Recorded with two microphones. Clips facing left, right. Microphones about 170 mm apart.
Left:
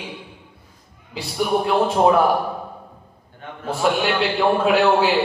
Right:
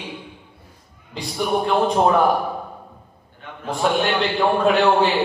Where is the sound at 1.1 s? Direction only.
5° left (ahead or behind).